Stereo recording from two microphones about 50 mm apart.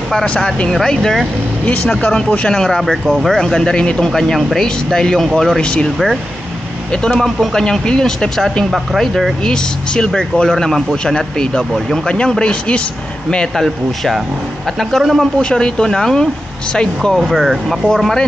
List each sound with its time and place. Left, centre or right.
0.1 s speech: centre
1.7 s speech: left
2.8 s speech: centre
3.3 s speech: centre
4.1 s speech: centre
4.9 s speech: centre
5.6 s speech: centre
6.9 s speech: centre
8.6 s speech: centre
9.4 s speech: centre
14.8 s speech: centre
15.5 s speech: centre
17.3 s speech: centre